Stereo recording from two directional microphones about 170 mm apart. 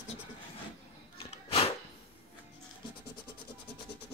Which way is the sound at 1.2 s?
35° left (ahead or behind).